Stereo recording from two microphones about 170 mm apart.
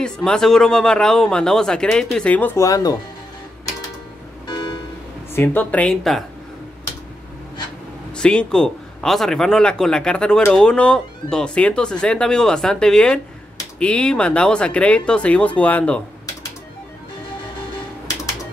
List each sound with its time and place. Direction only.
0.0 s speech: 5° left (ahead or behind); by 3.0 s 20° left (ahead or behind)
4.5 s music: 25° left (ahead or behind)
5.3 s speech: 10° left (ahead or behind)
8.2 s speech: 5° left (ahead or behind)